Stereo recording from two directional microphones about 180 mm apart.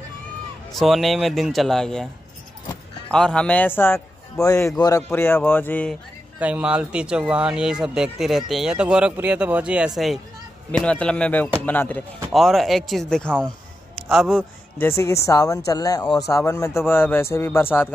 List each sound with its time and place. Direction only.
0.7 s speech: centre (ahead or behind)
3.1 s a man's voice: 5° left (ahead or behind)
6.4 s a man's voice: 5° right (ahead or behind)
14.8 s a man's voice: 15° left (ahead or behind)